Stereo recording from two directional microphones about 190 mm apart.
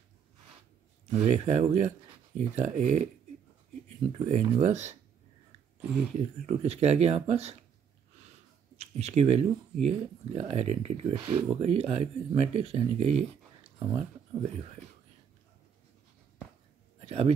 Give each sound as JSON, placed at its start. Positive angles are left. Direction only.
{"t": 1.1, "sound": "speech", "side_deg": -35}
{"t": 4.3, "sound": "speech", "side_deg": -40}
{"t": 6.1, "sound": "speech", "side_deg": -35}
{"t": 8.7, "sound": "speech", "side_deg": -35}
{"t": 17.0, "sound": "speech", "side_deg": -30}